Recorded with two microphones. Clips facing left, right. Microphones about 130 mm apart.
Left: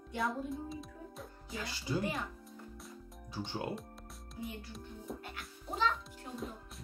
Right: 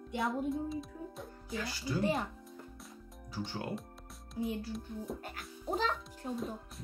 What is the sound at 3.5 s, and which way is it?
Speech, 20° left (ahead or behind).